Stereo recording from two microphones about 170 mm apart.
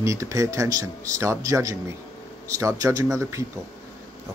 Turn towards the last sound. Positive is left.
turn(degrees=-20)  # may be behind; listen again after turning